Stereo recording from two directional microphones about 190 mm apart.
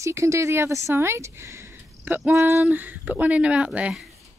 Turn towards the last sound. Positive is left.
turn(degrees=-5)  # may be behind; listen again after turning